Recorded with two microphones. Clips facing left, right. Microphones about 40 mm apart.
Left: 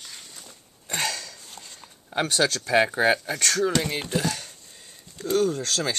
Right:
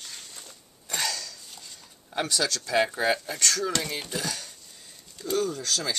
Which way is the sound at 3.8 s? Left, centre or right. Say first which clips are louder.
Left 5 dB; left.